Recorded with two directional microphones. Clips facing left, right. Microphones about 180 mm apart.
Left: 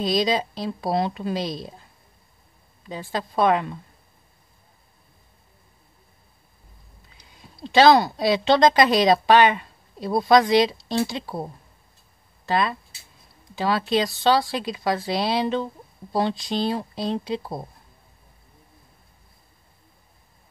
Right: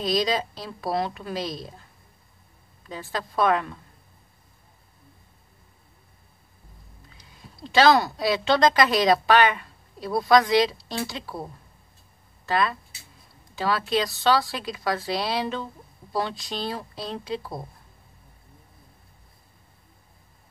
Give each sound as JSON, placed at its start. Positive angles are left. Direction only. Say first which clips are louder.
{"t": 0.2, "sound": "a woman's voice", "louder": "left 3 dB", "side_deg": 20}
{"t": 2.9, "sound": "a woman's voice", "louder": "left 3 dB", "side_deg": 20}
{"t": 7.7, "sound": "a woman's voice", "louder": "left 3 dB", "side_deg": 20}
{"t": 12.4, "sound": "a woman's voice", "louder": "left 1 dB", "side_deg": 20}